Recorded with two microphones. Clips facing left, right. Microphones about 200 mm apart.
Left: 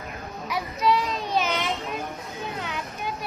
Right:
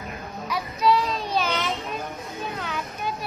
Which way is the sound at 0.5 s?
20° left (ahead or behind).